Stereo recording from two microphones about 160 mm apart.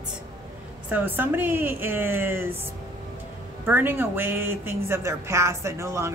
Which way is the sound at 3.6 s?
15° right (ahead or behind).